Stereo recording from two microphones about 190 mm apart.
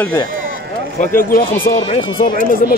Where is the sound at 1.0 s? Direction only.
45° left (ahead or behind).